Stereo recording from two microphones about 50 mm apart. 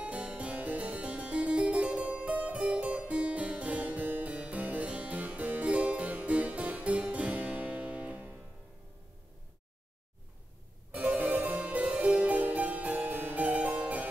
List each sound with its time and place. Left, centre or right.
0.0 s music: right
3.1 s harpsichord: right
10.9 s harpsichord: right